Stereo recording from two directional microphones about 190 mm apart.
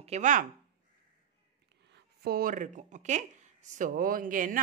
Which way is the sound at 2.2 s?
50° right (ahead or behind).